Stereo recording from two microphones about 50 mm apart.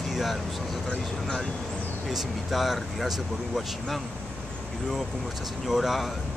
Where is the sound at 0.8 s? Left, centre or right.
Centre.